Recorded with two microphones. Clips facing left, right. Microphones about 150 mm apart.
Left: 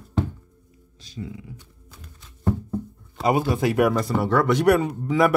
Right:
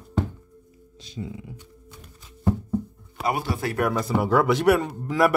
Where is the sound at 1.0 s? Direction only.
25° right (ahead or behind).